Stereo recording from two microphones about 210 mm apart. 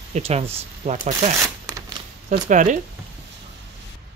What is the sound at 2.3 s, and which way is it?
Speech, 35° right (ahead or behind).